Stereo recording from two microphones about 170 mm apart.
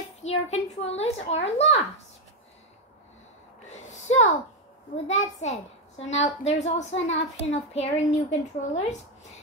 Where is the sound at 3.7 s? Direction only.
40° left (ahead or behind).